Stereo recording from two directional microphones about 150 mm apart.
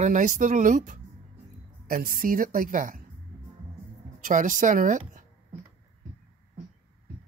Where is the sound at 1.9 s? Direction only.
70° right (ahead or behind).